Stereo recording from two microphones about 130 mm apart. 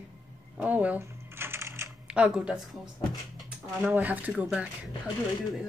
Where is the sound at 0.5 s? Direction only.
10° right (ahead or behind).